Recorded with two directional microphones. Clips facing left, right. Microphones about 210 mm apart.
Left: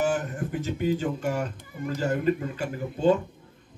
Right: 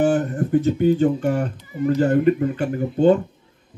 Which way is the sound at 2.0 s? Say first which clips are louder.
Right 7 dB; 55° right (ahead or behind).